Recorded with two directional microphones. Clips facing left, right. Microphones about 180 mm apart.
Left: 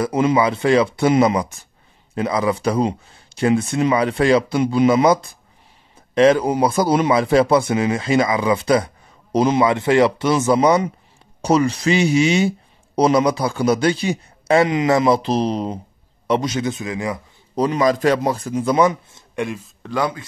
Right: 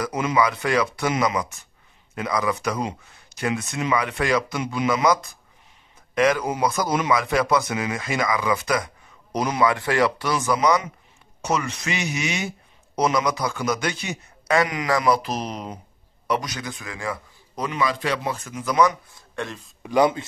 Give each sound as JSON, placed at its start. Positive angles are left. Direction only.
{"t": 0.0, "sound": "speech", "side_deg": 30}
{"t": 17.6, "sound": "speech", "side_deg": 35}
{"t": 19.3, "sound": "a man's voice", "side_deg": 10}
{"t": 19.8, "sound": "speech", "side_deg": -20}